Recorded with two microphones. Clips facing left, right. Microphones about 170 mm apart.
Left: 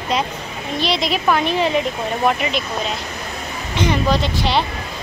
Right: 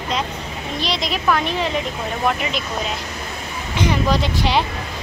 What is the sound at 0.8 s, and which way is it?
Speech, 5° left (ahead or behind).